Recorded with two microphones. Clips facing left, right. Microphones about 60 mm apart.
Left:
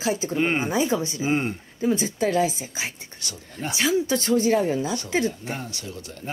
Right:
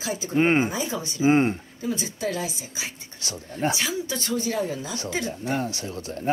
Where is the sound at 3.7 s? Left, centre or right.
Left.